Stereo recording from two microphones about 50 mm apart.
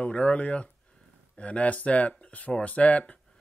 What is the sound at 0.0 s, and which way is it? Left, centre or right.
Speech, left.